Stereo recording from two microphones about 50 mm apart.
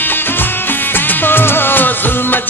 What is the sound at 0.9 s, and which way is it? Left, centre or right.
Music of bollywood, left.